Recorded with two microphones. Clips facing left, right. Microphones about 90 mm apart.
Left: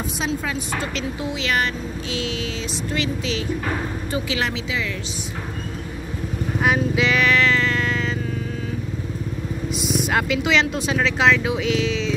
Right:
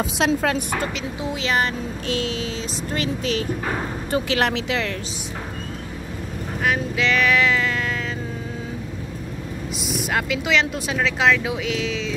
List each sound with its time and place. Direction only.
0.2 s speech: 65° right (ahead or behind)
1.4 s a sound: 30° right (ahead or behind)
2.9 s speech: 45° right (ahead or behind)
4.1 s speech: 55° right (ahead or behind)
6.6 s speech: 15° left (ahead or behind)
7.2 s music: 5° right (ahead or behind)
9.8 s speech: centre (ahead or behind)